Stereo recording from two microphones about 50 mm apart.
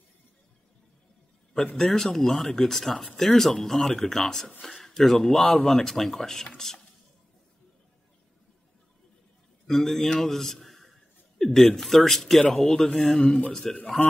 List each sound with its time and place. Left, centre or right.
1.8 s speech: centre
9.7 s a man's voice: centre